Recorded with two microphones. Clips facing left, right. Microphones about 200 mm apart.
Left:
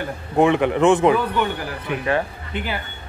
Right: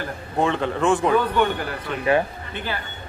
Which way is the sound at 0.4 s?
15° left (ahead or behind).